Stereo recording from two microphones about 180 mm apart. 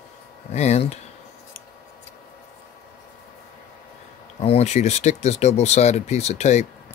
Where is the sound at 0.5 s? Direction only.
40° left (ahead or behind).